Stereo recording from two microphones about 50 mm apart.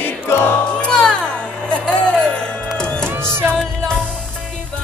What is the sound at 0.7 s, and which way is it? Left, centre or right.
Music, centre.